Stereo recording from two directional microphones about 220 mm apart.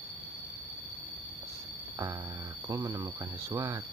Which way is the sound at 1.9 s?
15° right (ahead or behind).